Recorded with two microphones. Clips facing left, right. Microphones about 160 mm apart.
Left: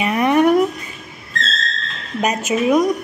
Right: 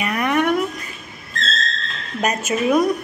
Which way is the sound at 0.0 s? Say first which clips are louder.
Left 5 dB; 25° left (ahead or behind).